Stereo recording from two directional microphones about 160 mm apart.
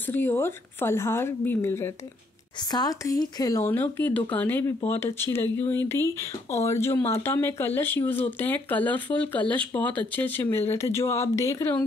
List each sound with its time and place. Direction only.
0.1 s speech: 15° left (ahead or behind)